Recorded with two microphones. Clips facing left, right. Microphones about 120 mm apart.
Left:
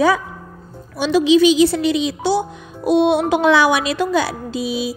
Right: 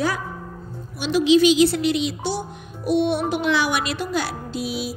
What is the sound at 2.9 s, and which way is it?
Speech, 90° left.